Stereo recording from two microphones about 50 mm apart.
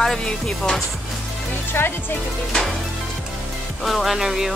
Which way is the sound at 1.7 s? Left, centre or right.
Left.